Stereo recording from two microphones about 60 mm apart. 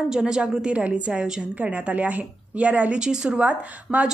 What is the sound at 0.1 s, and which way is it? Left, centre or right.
A woman's voice, centre.